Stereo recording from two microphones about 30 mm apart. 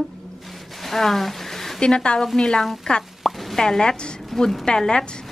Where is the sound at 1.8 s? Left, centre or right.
Left.